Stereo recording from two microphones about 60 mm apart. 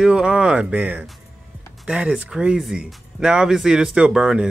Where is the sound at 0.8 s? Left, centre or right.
Right.